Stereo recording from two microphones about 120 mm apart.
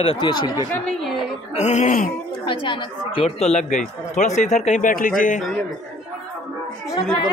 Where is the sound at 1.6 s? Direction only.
80° left.